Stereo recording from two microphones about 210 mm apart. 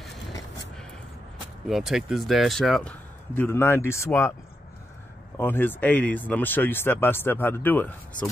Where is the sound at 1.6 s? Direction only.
Centre (ahead or behind).